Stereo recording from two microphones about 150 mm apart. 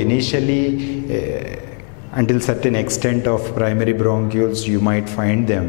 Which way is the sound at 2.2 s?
10° left (ahead or behind).